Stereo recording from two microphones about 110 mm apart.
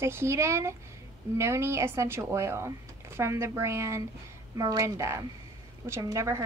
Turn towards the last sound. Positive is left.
turn(degrees=-30)  # may be behind; listen again after turning